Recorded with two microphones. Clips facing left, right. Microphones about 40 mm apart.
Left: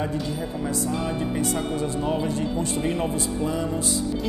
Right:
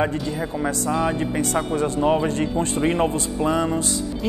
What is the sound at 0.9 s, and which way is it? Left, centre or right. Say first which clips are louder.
A man's voice: right 4 dB; right.